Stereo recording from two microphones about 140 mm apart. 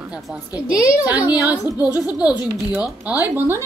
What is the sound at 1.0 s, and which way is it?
Speech, 10° right (ahead or behind).